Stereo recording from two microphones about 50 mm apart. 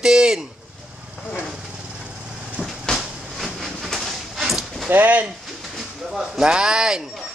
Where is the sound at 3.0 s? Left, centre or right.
Centre.